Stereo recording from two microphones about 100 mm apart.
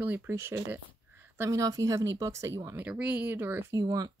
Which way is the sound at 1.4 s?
35° right (ahead or behind).